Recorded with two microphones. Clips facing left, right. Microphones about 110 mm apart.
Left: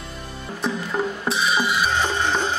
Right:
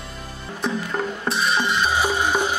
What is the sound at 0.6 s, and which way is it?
Music, centre (ahead or behind).